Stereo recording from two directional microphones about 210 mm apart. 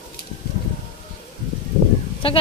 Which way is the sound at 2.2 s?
25° left (ahead or behind).